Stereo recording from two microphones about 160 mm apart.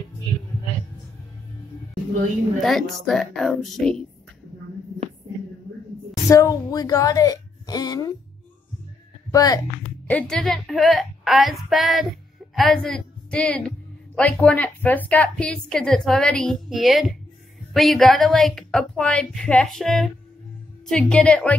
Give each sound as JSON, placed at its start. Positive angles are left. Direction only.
{"t": 2.6, "sound": "a woman's voice", "side_deg": 0}
{"t": 6.2, "sound": "a woman's voice", "side_deg": 20}
{"t": 9.3, "sound": "speech", "side_deg": 25}
{"t": 10.0, "sound": "a woman's voice", "side_deg": 5}